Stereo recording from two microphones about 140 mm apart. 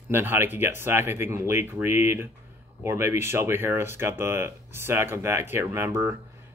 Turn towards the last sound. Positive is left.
turn(degrees=-15)  # may be behind; listen again after turning